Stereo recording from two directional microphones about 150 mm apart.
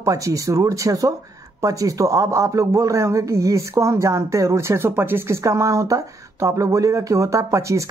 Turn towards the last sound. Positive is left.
turn(degrees=-20)  # may be behind; listen again after turning